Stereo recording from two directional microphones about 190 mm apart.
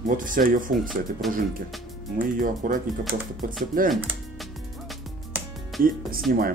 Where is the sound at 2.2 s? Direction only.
45° right (ahead or behind).